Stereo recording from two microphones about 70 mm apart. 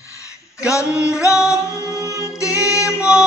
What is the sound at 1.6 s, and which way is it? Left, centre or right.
Music, left.